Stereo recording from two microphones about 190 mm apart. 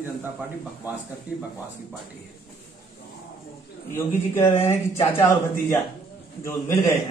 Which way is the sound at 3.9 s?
15° left (ahead or behind).